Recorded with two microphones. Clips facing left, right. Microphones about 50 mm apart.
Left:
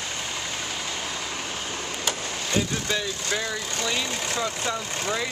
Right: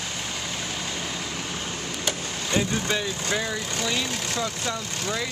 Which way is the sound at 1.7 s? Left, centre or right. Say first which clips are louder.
Even; centre.